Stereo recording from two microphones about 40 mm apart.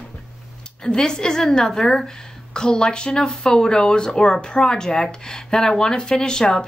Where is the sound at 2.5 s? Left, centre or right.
Centre.